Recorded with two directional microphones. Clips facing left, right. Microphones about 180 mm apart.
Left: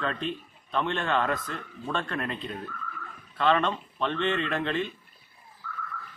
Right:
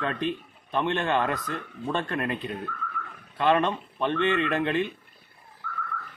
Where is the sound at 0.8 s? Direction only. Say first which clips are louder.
Right 2 dB; 15° right (ahead or behind).